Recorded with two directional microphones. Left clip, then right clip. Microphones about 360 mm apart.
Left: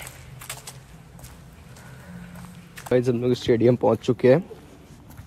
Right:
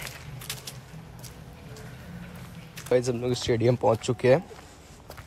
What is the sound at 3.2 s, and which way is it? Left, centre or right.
Speech, centre.